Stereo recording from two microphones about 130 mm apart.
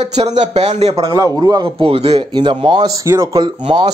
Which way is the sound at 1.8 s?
50° right (ahead or behind).